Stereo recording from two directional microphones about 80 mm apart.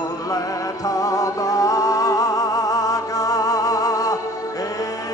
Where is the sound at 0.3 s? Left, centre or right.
Left.